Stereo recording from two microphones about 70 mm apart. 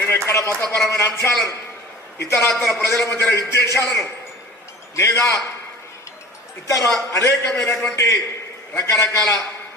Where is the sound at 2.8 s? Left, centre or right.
Left.